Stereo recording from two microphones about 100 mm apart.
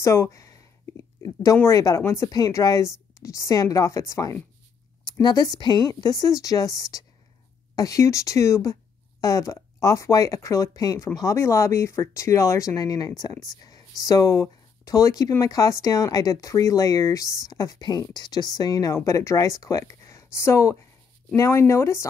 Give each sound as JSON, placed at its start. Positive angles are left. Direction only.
{"t": 0.0, "sound": "speech", "side_deg": 30}
{"t": 5.2, "sound": "speech", "side_deg": 45}